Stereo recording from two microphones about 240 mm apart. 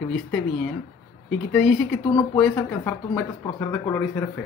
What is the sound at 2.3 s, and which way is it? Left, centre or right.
Speech, centre.